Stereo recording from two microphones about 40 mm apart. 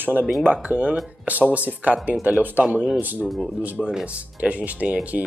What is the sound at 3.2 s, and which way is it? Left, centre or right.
Speech, centre.